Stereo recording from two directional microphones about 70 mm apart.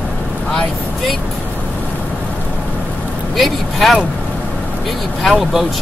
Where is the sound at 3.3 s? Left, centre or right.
Centre.